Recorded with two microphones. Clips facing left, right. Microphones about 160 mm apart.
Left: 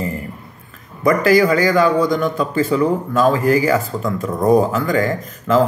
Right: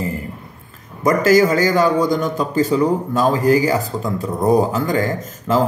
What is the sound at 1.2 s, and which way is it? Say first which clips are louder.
Speech: right 1 dB; 40° right (ahead or behind).